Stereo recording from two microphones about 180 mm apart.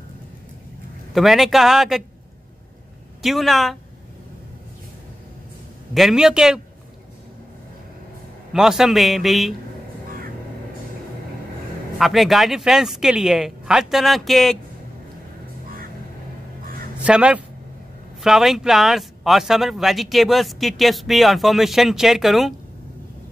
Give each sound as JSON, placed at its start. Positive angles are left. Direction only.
{"t": 1.1, "sound": "speech", "side_deg": 0}
{"t": 3.2, "sound": "speech", "side_deg": 0}
{"t": 5.9, "sound": "speech", "side_deg": -5}
{"t": 8.5, "sound": "speech", "side_deg": 0}
{"t": 12.0, "sound": "speech", "side_deg": 0}
{"t": 17.0, "sound": "a man's voice", "side_deg": -5}